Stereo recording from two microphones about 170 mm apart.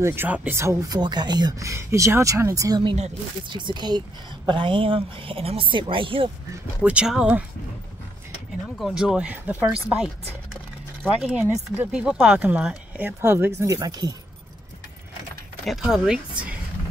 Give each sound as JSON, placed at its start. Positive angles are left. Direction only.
{"t": 0.0, "sound": "a woman's voice", "side_deg": -15}
{"t": 6.8, "sound": "speech", "side_deg": -5}
{"t": 11.1, "sound": "speech", "side_deg": 0}
{"t": 15.6, "sound": "speech", "side_deg": 0}